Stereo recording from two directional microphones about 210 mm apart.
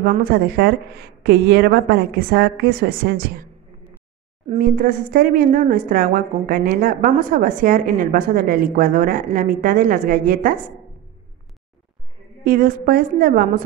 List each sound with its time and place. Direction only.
0.0 s a woman's voice: 45° right (ahead or behind)
4.6 s a woman's voice: 45° right (ahead or behind)
12.4 s a woman's voice: 45° right (ahead or behind)